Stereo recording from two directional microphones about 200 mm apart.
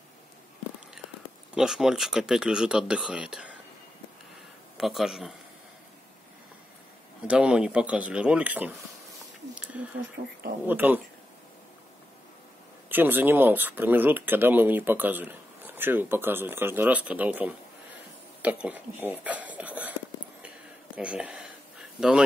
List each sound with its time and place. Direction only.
1.5 s speech: centre (ahead or behind)
4.7 s speech: centre (ahead or behind)
7.2 s speech: 5° right (ahead or behind)
10.2 s speech: 30° right (ahead or behind)
10.7 s speech: 10° right (ahead or behind)
12.9 s speech: 10° right (ahead or behind)
20.4 s a sound: 5° right (ahead or behind)